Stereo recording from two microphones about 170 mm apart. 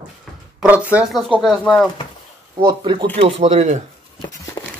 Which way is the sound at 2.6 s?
30° right (ahead or behind).